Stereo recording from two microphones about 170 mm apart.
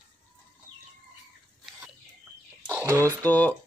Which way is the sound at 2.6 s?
15° right (ahead or behind).